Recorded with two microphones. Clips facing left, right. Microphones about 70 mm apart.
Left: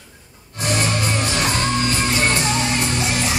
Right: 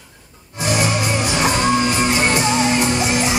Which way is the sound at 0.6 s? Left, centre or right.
Centre.